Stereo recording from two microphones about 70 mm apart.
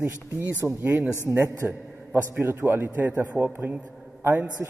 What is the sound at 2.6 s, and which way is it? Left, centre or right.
A man's voice, right.